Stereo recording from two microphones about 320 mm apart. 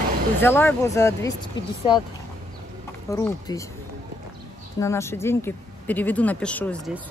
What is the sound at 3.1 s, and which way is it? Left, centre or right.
Speech, centre.